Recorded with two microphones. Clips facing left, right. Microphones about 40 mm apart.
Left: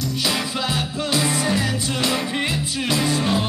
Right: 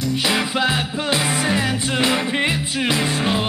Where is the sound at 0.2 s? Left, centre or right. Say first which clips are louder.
Right 4 dB; right.